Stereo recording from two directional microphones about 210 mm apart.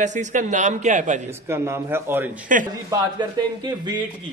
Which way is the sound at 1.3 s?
10° right (ahead or behind).